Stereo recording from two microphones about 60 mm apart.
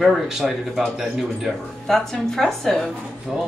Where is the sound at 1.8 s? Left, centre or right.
Centre.